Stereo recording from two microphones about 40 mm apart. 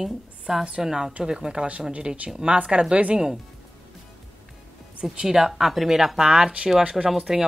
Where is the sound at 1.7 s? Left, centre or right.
Right.